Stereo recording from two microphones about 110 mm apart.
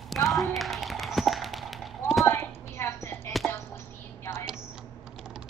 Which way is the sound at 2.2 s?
25° left (ahead or behind).